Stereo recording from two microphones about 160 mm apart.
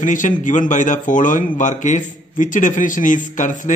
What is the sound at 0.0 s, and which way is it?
A man's voice, 55° left (ahead or behind).